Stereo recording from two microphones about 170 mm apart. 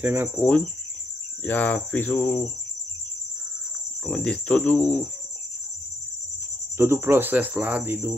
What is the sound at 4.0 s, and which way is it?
Speech, 5° left (ahead or behind).